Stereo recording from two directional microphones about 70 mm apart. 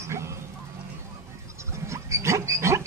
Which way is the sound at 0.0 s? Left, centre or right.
Right.